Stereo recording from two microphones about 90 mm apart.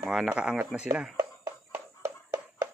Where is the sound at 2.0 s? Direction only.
35° right (ahead or behind).